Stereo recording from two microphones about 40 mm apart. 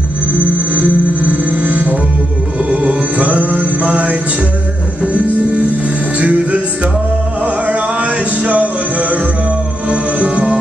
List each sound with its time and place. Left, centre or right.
0.4 s music: right
2.8 s music: right
6.1 s music: right